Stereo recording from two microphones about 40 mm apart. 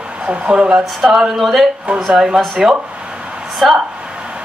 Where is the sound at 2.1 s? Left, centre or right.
Centre.